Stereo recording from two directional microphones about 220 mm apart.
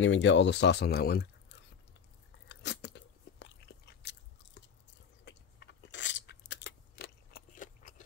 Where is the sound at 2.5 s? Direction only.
50° left (ahead or behind).